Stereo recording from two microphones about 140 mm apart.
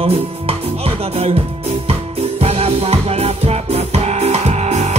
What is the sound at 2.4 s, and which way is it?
Music, 45° right (ahead or behind).